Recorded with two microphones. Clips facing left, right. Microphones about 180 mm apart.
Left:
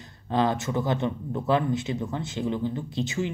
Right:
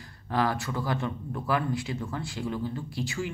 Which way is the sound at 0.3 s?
20° left (ahead or behind).